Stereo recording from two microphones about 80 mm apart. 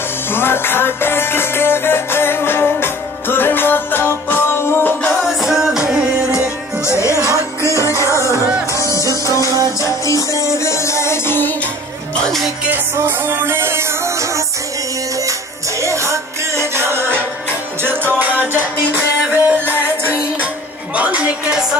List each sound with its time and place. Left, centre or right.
0.3 s music: left
5.4 s music: centre
7.0 s music: left
9.5 s music: right
10.0 s music: left
12.7 s music: right
15.8 s music: right
17.8 s music: right
20.9 s a sound: centre